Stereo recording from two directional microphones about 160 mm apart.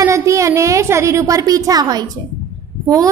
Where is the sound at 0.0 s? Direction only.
20° right (ahead or behind).